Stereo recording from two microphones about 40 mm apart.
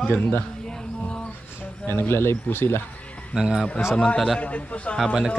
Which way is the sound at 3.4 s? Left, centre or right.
Centre.